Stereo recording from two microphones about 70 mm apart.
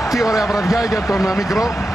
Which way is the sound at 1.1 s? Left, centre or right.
Left.